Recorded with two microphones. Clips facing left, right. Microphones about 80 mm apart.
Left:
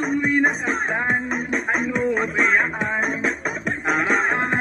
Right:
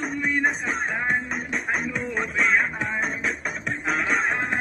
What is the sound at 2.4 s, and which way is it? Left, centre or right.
Music, left.